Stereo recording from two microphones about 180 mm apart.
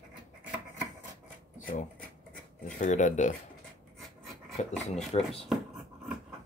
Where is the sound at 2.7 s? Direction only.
45° left (ahead or behind).